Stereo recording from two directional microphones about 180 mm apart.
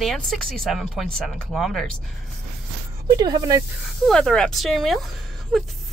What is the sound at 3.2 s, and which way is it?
Speech, 20° right (ahead or behind).